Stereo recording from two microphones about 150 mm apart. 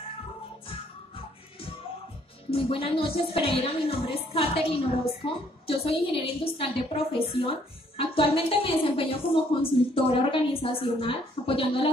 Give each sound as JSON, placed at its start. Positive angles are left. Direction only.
{"t": 0.7, "sound": "music", "side_deg": 35}
{"t": 2.5, "sound": "a woman's voice", "side_deg": 35}